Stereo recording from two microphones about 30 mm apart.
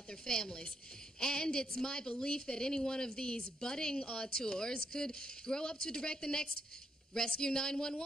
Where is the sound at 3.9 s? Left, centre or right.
Left.